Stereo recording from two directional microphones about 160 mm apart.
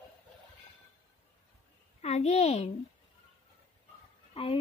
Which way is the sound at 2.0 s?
40° left (ahead or behind).